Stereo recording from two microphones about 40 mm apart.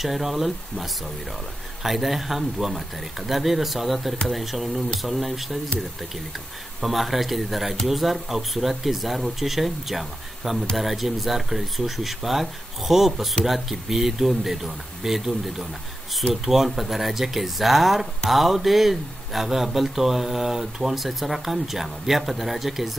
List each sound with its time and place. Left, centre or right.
0.0 s speech: centre
6.8 s speech: centre